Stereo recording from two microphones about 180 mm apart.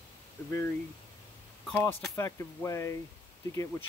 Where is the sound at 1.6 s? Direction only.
5° left (ahead or behind).